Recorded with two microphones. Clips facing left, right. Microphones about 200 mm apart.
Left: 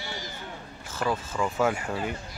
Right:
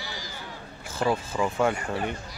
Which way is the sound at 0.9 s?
10° right (ahead or behind).